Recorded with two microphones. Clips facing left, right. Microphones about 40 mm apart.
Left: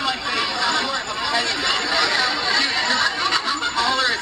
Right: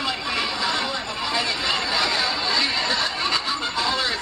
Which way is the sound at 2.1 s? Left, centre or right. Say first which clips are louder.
Left 3 dB; left.